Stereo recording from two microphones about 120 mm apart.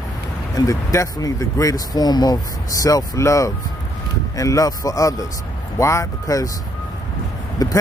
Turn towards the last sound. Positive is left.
turn(degrees=30)  # may be behind; listen again after turning